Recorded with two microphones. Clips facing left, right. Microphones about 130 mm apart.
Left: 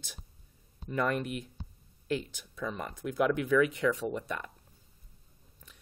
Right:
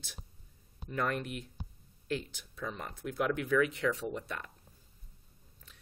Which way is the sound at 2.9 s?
15° left (ahead or behind).